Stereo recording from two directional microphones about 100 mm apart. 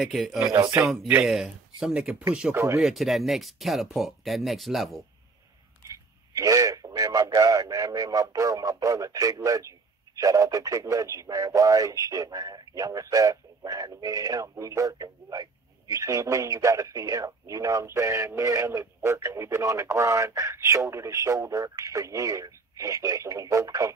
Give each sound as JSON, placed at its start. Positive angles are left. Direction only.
{"t": 0.0, "sound": "speech", "side_deg": 0}
{"t": 0.4, "sound": "speech", "side_deg": -40}
{"t": 0.7, "sound": "speech", "side_deg": -20}
{"t": 1.2, "sound": "speech", "side_deg": -5}
{"t": 2.5, "sound": "speech", "side_deg": -30}
{"t": 2.8, "sound": "speech", "side_deg": 0}
{"t": 5.9, "sound": "speech", "side_deg": -35}